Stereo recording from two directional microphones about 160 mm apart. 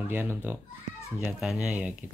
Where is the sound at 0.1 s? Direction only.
10° right (ahead or behind).